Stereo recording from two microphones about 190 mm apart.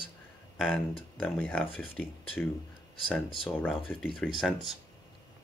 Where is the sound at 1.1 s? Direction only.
5° left (ahead or behind).